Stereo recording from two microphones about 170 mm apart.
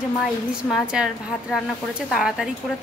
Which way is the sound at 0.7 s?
Centre (ahead or behind).